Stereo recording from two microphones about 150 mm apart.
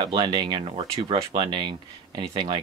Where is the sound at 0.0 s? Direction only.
30° right (ahead or behind).